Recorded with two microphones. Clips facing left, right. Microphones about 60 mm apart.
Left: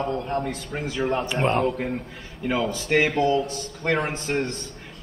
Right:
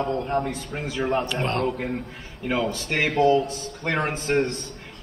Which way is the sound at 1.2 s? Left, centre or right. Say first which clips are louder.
Left 3 dB; centre.